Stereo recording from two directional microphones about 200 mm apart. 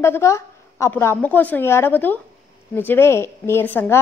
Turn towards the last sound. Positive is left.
turn(degrees=10)  # may be behind; listen again after turning